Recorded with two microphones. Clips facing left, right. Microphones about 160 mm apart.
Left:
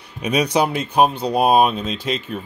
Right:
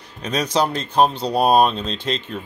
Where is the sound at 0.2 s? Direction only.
10° left (ahead or behind).